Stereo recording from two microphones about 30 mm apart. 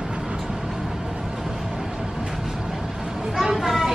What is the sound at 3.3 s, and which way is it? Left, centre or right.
Vehicle, centre.